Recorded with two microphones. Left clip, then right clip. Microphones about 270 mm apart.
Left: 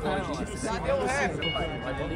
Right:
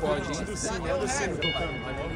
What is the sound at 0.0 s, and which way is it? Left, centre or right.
Music, right.